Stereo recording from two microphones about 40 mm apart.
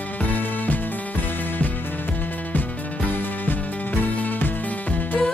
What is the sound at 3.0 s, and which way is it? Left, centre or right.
Music, left.